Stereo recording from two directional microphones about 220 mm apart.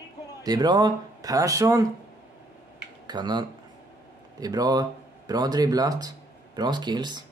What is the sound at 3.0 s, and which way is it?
Speech, 20° right (ahead or behind).